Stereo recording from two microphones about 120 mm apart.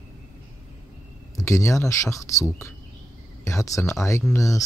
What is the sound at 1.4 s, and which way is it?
Speech, 25° left (ahead or behind).